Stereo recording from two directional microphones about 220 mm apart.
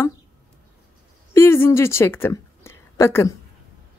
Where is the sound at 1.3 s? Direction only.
10° left (ahead or behind).